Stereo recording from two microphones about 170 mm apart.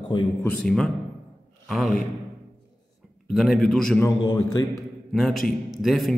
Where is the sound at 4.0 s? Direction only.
25° left (ahead or behind).